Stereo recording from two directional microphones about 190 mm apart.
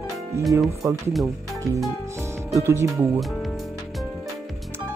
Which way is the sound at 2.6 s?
15° right (ahead or behind).